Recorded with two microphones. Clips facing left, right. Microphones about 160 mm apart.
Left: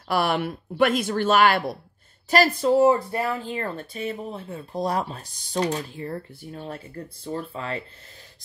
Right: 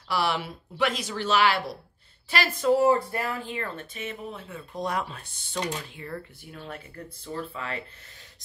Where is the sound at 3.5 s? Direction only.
35° left (ahead or behind).